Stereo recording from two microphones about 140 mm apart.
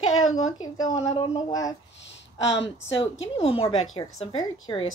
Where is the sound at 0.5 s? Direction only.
25° left (ahead or behind).